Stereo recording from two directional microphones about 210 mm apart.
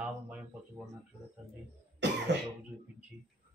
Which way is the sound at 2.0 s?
55° right (ahead or behind).